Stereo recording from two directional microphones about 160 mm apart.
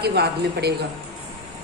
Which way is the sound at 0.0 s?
90° right.